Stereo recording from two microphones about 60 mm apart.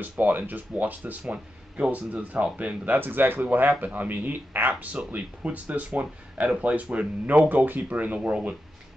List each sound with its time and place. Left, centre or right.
0.0 s speech: right